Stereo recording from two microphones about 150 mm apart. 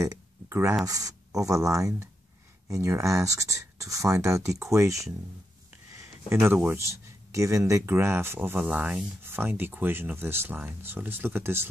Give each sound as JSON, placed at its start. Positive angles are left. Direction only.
{"t": 0.0, "sound": "a sound", "side_deg": -20}
{"t": 0.8, "sound": "speech", "side_deg": -25}
{"t": 5.9, "sound": "speech", "side_deg": -15}